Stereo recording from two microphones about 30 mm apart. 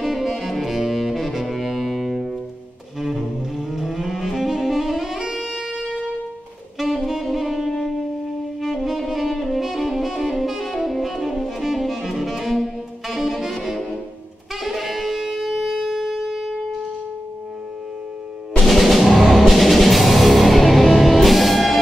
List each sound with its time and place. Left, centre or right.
0.0 s saxophone: centre
3.0 s cello: centre
5.3 s music: centre
6.8 s saxophone: centre
15.5 s shofar: centre
18.6 s music: centre